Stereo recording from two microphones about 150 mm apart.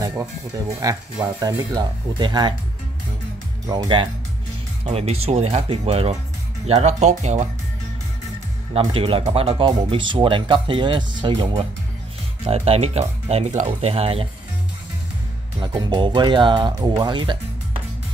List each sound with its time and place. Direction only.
0.0 s speech: 20° right (ahead or behind)
1.5 s speech: 25° right (ahead or behind)
3.6 s speech: 25° right (ahead or behind)
4.8 s speech: 45° right (ahead or behind)
8.7 s speech: 40° right (ahead or behind)
15.6 s speech: 30° right (ahead or behind)